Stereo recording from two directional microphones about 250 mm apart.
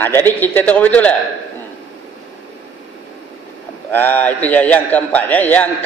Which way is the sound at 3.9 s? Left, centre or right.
Centre.